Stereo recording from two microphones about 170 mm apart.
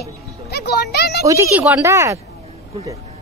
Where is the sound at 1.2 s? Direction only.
15° right (ahead or behind).